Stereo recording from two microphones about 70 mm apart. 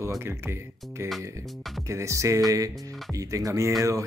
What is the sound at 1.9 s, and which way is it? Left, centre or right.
Speech, right.